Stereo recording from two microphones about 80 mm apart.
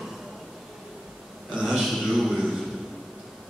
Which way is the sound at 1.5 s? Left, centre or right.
Centre.